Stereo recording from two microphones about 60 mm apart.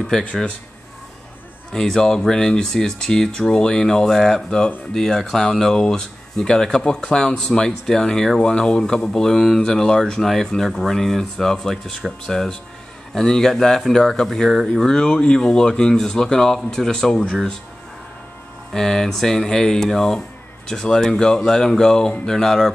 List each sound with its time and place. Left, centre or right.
0.0 s speech: centre
1.7 s speech: centre
14.9 s speech: centre
18.7 s speech: centre